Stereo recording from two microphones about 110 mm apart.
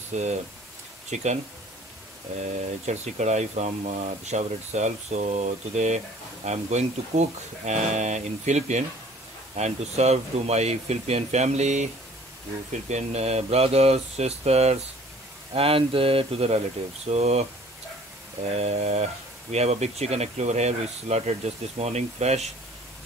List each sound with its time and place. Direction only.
0.1 s speech: 90° right
2.9 s speech: 90° right
15.5 s speech: 60° right (ahead or behind); by 17.5 s 75° right (ahead or behind)
18.6 s speech: 70° right (ahead or behind); by 22.5 s 90° right